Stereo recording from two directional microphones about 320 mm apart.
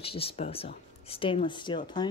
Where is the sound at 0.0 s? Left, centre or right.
Centre.